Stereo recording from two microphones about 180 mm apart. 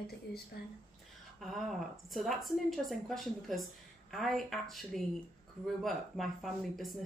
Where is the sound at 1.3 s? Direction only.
Centre (ahead or behind).